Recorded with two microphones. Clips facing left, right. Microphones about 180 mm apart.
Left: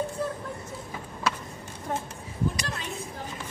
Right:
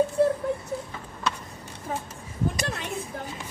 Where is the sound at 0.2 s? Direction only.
70° right (ahead or behind).